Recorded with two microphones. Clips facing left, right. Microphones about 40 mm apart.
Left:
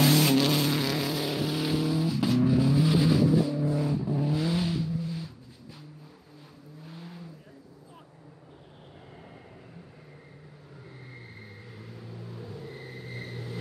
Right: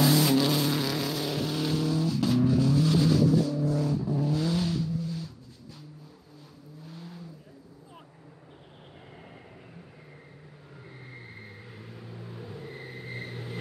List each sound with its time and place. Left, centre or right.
0.0 s vehicle: left
0.6 s vehicle: centre
6.9 s vehicle: centre
11.8 s vehicle: right